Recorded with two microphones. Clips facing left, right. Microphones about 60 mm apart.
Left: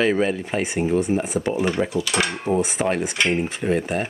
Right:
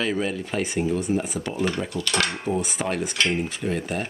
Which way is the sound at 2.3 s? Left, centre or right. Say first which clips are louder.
Left 4 dB; left.